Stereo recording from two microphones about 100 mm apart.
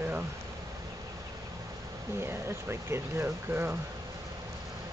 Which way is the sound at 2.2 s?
25° right (ahead or behind).